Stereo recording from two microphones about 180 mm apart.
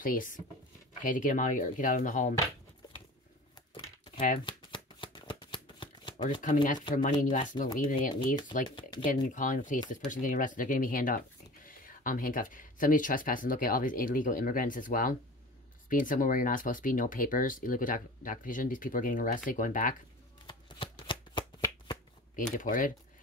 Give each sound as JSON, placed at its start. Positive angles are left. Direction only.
{"t": 0.0, "sound": "speech", "side_deg": 50}
{"t": 2.8, "sound": "a sound", "side_deg": 20}
{"t": 4.5, "sound": "shuffling cards", "side_deg": 25}
{"t": 6.4, "sound": "speech", "side_deg": 45}
{"t": 8.6, "sound": "speech", "side_deg": 25}
{"t": 9.0, "sound": "speech", "side_deg": 45}
{"t": 20.4, "sound": "shuffling cards", "side_deg": 25}
{"t": 22.6, "sound": "speech", "side_deg": 50}